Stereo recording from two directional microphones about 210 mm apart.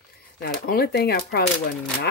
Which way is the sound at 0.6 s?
50° left (ahead or behind).